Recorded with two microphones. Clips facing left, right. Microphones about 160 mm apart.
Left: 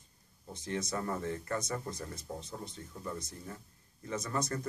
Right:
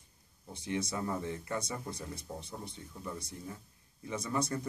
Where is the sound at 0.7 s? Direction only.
10° right (ahead or behind).